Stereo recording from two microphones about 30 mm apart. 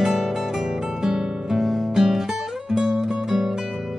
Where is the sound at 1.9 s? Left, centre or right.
Centre.